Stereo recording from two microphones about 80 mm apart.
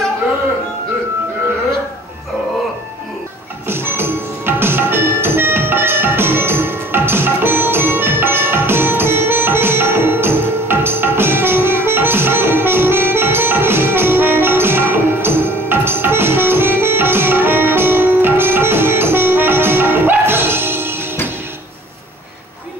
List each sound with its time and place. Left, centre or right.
3.6 s music: right